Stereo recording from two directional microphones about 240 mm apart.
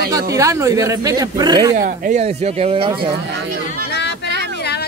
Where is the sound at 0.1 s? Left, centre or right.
Centre.